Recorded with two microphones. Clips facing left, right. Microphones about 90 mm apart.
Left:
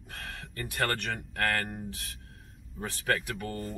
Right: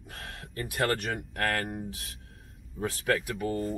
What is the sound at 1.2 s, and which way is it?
Speech, 10° right (ahead or behind).